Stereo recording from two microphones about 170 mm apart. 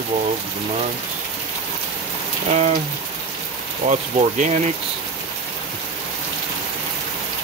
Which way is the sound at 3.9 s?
45° right (ahead or behind).